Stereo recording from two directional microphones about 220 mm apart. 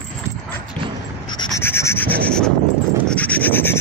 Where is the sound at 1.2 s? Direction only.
15° left (ahead or behind).